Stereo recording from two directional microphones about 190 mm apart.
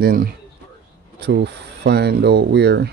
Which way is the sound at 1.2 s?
65° right (ahead or behind).